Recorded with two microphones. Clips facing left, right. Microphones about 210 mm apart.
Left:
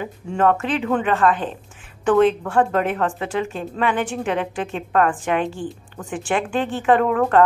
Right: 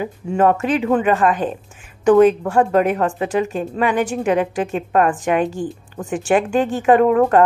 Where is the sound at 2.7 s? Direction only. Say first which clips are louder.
Right 5 dB; 10° right (ahead or behind).